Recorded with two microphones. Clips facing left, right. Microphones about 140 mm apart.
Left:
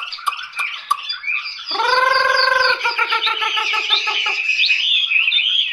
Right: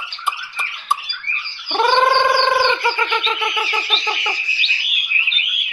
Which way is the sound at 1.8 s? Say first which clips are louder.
Right 3 dB; 15° right (ahead or behind).